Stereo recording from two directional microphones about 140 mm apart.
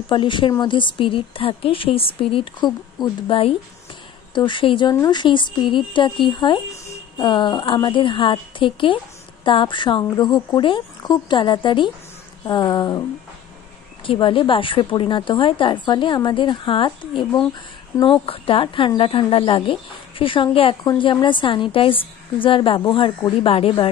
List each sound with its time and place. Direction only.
0.1 s a woman's voice: 35° left (ahead or behind)
14.0 s a woman's voice: 35° left (ahead or behind)